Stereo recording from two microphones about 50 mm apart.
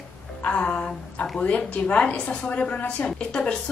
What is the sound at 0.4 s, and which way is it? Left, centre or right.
Music, left.